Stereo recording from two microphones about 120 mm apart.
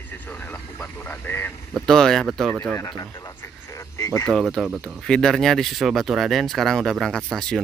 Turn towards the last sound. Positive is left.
turn(degrees=5)  # may be behind; listen again after turning